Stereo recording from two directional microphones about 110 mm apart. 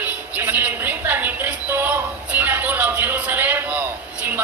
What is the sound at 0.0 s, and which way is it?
Music, 15° right (ahead or behind).